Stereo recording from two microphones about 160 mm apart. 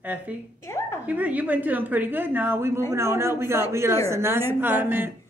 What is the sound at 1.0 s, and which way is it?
A woman's voice, 10° right (ahead or behind).